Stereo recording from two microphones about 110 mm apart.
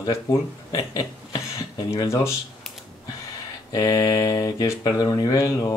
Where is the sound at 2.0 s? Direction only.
25° left (ahead or behind).